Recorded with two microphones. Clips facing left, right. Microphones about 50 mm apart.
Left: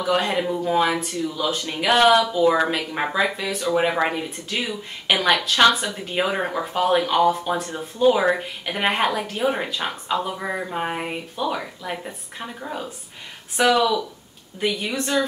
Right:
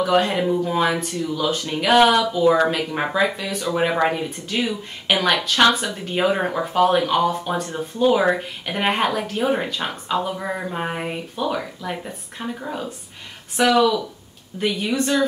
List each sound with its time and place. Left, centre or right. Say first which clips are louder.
0.0 s speech: right 3 dB; centre